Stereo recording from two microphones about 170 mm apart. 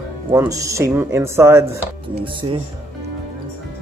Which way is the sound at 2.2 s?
30° right (ahead or behind).